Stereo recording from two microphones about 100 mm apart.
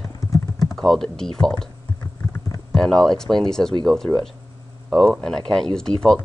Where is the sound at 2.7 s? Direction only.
5° left (ahead or behind).